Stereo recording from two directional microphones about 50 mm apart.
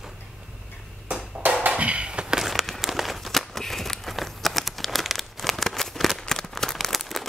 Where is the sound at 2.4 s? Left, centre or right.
Centre.